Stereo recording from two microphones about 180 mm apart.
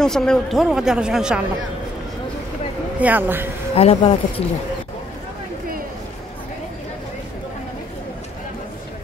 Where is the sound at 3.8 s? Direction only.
35° left (ahead or behind).